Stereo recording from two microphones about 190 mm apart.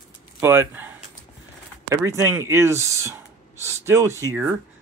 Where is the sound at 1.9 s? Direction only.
15° right (ahead or behind).